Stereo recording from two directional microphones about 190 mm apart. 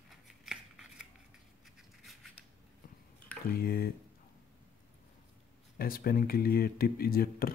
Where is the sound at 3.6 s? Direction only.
50° left (ahead or behind).